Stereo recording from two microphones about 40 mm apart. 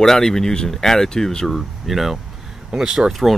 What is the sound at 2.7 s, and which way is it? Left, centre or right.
Speech, centre.